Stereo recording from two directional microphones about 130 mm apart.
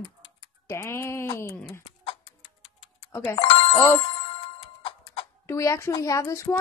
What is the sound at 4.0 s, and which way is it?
Music, 45° left (ahead or behind).